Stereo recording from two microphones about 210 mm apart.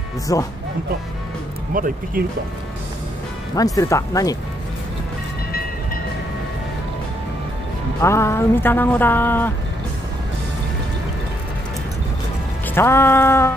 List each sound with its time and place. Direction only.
0.3 s speech: 15° left (ahead or behind)
1.7 s speech: 45° right (ahead or behind)
3.5 s speech: 15° left (ahead or behind)
8.0 s speech: 10° left (ahead or behind)
12.7 s speech: 10° left (ahead or behind)